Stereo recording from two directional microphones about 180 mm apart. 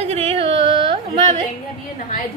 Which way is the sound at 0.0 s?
35° right (ahead or behind).